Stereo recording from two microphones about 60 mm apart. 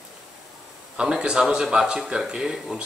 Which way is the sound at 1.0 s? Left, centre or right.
Centre.